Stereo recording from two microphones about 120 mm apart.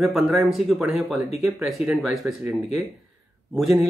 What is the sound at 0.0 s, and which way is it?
A man's voice, centre (ahead or behind).